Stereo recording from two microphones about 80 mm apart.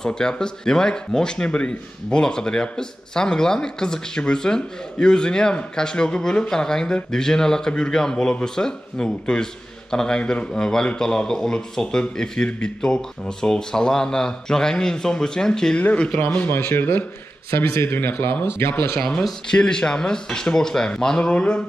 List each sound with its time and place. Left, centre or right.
0.0 s speech: centre
15.8 s speech: centre
18.9 s speech: centre